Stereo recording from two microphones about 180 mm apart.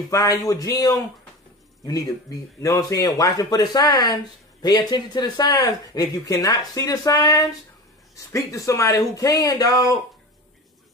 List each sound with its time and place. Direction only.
0.1 s speech: 20° left (ahead or behind)